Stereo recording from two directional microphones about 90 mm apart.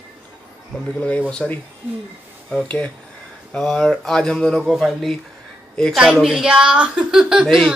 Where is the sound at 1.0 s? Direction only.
15° left (ahead or behind).